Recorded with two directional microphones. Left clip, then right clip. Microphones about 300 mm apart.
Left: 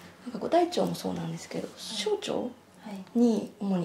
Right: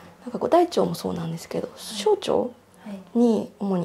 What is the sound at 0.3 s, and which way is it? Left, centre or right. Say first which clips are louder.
Speech: right 6 dB; right.